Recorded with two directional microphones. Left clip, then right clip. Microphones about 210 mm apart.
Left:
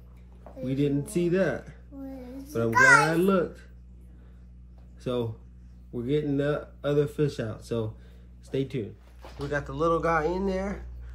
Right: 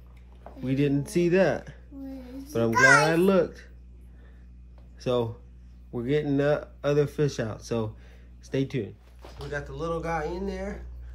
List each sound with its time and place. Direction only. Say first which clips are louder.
0.6 s speech: right 1 dB; 25° right (ahead or behind)
5.0 s speech: right 4 dB; 25° right (ahead or behind)
9.2 s speech: left 3 dB; centre (ahead or behind)